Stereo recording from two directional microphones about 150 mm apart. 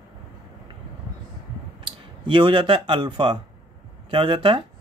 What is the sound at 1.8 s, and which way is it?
Speech, 35° right (ahead or behind).